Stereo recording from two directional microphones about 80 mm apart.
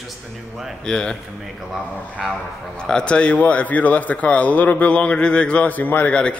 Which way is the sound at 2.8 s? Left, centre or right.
Centre.